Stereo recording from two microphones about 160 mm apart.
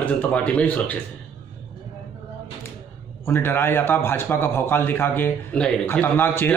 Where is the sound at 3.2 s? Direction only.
15° left (ahead or behind).